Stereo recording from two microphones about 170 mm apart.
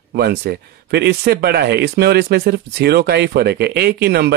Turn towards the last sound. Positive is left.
turn(degrees=-70)  # may be behind; listen again after turning